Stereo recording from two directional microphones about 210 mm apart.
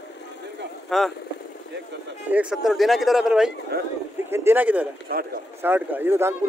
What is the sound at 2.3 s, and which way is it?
Speech, centre (ahead or behind).